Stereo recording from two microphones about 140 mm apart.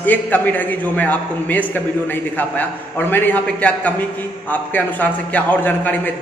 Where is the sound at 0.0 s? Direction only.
15° left (ahead or behind).